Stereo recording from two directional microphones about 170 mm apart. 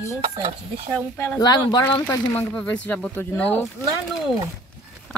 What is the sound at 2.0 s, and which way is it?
Speech, 10° left (ahead or behind).